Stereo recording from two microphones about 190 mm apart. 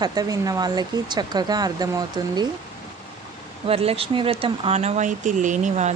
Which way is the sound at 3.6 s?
30° right (ahead or behind).